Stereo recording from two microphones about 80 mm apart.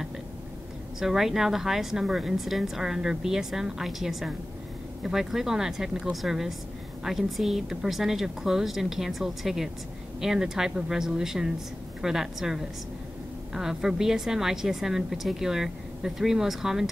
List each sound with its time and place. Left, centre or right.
0.9 s a woman's voice: centre